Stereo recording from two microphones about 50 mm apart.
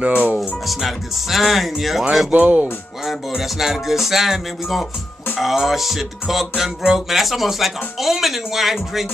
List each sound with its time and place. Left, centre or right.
0.0 s speech: right
0.4 s music: centre
2.3 s speech: right
3.1 s music: centre